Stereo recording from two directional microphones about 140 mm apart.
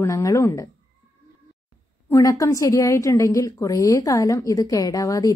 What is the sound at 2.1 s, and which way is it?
A woman's voice, 25° left (ahead or behind).